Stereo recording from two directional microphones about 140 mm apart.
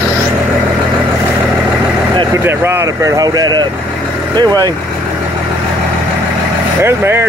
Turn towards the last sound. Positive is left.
turn(degrees=-15)  # may be behind; listen again after turning